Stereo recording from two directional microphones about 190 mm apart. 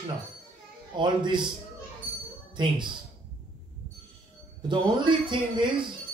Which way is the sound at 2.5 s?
25° right (ahead or behind).